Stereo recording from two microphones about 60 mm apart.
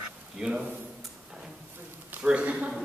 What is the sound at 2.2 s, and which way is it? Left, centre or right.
Speech, centre.